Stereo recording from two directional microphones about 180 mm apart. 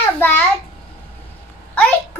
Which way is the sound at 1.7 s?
10° left (ahead or behind).